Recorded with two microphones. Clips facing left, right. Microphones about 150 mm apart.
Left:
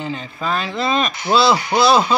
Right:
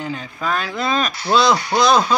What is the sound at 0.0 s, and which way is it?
Speech, centre (ahead or behind).